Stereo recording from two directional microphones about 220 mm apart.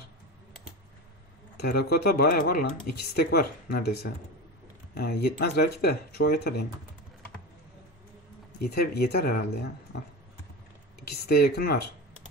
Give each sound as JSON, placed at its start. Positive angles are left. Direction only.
{"t": 1.6, "sound": "speech", "side_deg": 45}
{"t": 8.5, "sound": "speech", "side_deg": 45}
{"t": 11.1, "sound": "speech", "side_deg": 45}